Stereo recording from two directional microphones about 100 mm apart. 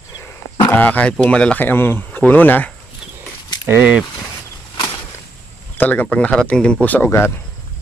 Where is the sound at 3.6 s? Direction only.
15° right (ahead or behind).